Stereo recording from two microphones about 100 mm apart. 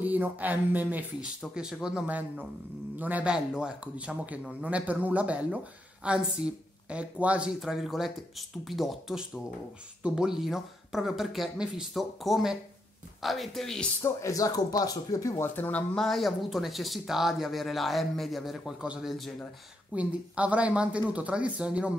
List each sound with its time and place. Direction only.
0.0 s speech: 15° right (ahead or behind); by 13.8 s 5° left (ahead or behind)
14.0 s speech: 35° left (ahead or behind)
15.5 s speech: 15° left (ahead or behind); by 19.3 s centre (ahead or behind)
19.9 s speech: 15° right (ahead or behind)